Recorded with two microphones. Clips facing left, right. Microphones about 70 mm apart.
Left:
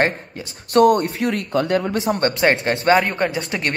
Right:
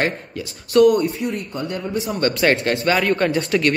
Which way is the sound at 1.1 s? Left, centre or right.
Left.